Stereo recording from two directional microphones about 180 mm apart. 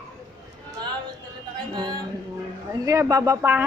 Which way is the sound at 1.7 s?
25° right (ahead or behind).